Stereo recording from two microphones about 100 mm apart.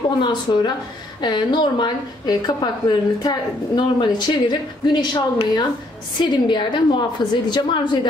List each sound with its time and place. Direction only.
0.2 s a woman's voice: 50° left (ahead or behind)